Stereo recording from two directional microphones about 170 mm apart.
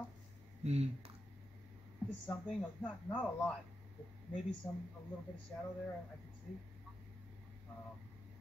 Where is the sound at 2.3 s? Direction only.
5° left (ahead or behind).